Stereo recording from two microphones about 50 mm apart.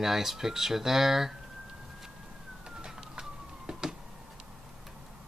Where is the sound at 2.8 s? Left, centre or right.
Centre.